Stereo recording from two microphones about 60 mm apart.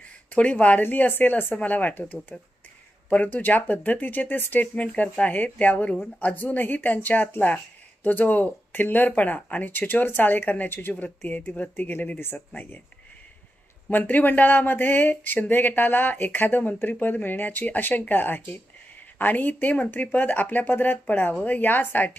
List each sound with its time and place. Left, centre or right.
0.3 s speech: left
13.8 s speech: left